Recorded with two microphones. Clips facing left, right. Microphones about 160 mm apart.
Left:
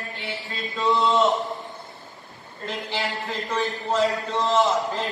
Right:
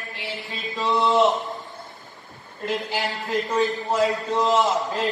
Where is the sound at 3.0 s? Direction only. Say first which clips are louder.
Right 3 dB; centre (ahead or behind).